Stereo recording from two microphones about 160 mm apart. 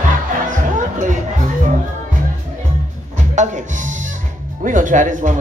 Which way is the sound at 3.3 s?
50° right (ahead or behind).